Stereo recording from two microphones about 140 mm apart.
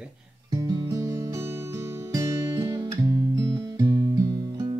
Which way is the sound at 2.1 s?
20° right (ahead or behind).